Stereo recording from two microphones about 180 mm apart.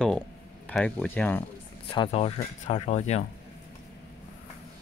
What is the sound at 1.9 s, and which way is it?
Speech, 35° left (ahead or behind).